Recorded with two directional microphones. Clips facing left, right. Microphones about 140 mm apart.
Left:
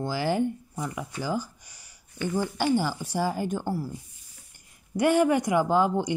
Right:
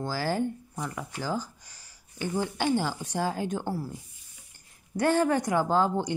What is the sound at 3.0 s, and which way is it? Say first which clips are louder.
Speech: left 2 dB; 10° left (ahead or behind).